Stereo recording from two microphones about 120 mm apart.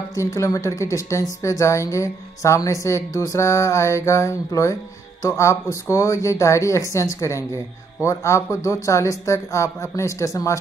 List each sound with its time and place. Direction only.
0.1 s a woman's voice: 25° left (ahead or behind)